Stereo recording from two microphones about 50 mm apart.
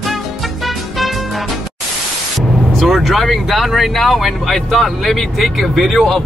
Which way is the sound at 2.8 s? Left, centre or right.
Centre.